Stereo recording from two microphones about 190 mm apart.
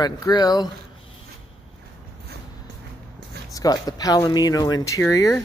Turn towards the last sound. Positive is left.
turn(degrees=10)  # may be behind; listen again after turning